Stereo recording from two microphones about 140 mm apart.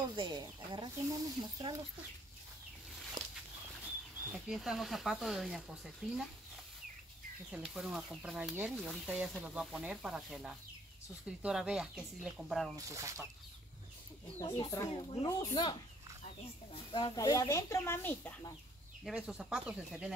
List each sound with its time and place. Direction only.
0.1 s speech: 35° right (ahead or behind)
3.2 s a sound: 30° right (ahead or behind)
4.3 s speech: centre (ahead or behind)
7.5 s speech: 5° right (ahead or behind)
12.7 s speech: 25° right (ahead or behind)
14.9 s speech: 40° left (ahead or behind)
16.7 s speech: 40° left (ahead or behind)
17.1 s speech: 25° left (ahead or behind)
19.0 s speech: 5° right (ahead or behind)